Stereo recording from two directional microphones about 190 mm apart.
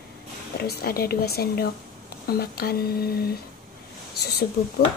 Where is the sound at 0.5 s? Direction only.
55° left (ahead or behind).